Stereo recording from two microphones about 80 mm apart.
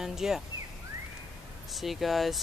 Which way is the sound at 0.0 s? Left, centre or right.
Centre.